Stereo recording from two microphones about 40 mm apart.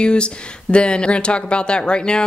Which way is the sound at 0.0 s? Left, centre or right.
Left.